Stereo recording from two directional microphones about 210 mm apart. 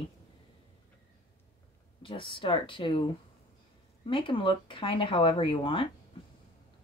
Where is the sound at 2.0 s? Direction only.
25° left (ahead or behind).